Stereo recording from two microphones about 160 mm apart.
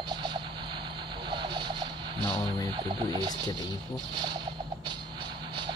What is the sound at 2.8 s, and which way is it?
Speech, 25° right (ahead or behind).